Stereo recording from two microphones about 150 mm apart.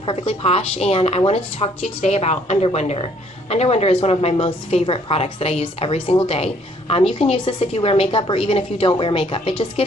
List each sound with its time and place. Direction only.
0.0 s a woman's voice: 35° left (ahead or behind)